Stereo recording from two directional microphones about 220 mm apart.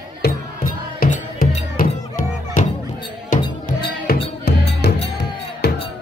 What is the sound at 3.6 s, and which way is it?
Music, 45° left (ahead or behind).